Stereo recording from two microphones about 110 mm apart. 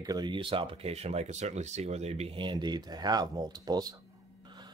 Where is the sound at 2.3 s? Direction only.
45° right (ahead or behind).